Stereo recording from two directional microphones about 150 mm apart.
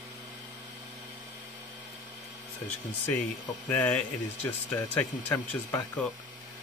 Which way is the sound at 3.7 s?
10° left (ahead or behind).